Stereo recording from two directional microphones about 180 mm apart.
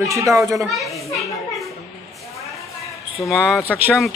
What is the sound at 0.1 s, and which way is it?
Speech, 15° right (ahead or behind).